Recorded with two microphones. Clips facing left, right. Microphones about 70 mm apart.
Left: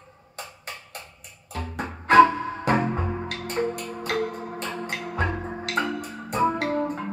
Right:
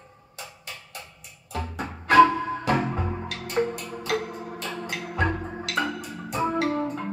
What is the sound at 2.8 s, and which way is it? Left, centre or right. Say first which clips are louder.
Music: left 2 dB; centre.